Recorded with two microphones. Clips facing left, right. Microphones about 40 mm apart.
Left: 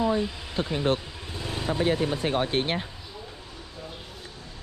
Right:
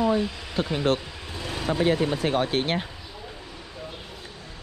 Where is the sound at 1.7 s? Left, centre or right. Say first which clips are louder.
Right 2 dB; right.